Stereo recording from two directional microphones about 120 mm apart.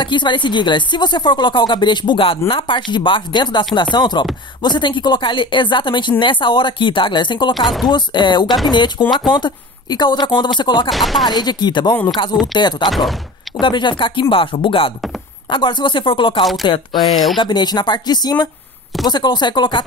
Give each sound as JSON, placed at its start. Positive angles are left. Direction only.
{"t": 0.0, "sound": "speech", "side_deg": 40}
{"t": 7.5, "sound": "speech", "side_deg": 0}
{"t": 7.9, "sound": "speech", "side_deg": 40}
{"t": 10.9, "sound": "speech", "side_deg": 0}
{"t": 11.2, "sound": "speech", "side_deg": 35}
{"t": 16.9, "sound": "speech", "side_deg": 0}
{"t": 17.4, "sound": "speech", "side_deg": 35}